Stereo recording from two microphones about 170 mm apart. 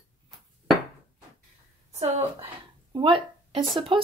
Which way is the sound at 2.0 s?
40° right (ahead or behind).